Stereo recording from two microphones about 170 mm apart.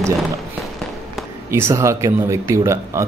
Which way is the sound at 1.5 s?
15° right (ahead or behind).